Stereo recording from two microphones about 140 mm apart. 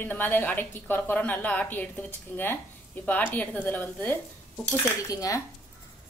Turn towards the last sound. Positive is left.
turn(degrees=25)  # may be behind; listen again after turning